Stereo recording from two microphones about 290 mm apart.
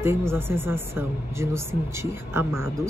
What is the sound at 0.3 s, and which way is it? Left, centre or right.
Speech, centre.